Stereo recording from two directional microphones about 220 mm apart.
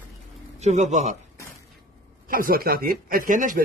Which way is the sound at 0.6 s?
35° right (ahead or behind).